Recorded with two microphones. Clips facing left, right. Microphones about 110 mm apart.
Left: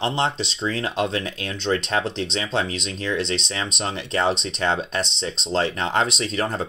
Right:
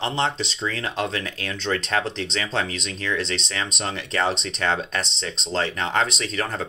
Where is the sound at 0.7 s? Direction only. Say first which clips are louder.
Left 3 dB; 25° left (ahead or behind).